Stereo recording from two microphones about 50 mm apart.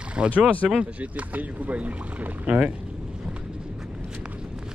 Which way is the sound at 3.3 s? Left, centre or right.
Centre.